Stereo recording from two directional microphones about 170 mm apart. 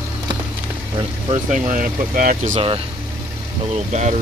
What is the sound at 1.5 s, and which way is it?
Speech, 50° right (ahead or behind).